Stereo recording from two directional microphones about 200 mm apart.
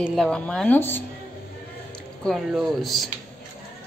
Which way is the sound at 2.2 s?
Centre (ahead or behind).